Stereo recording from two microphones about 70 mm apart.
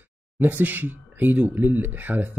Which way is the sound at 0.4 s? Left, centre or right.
Right.